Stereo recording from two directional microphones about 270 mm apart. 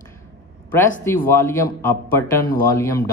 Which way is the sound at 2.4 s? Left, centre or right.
Left.